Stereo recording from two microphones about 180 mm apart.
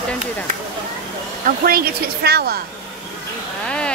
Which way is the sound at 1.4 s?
55° right (ahead or behind).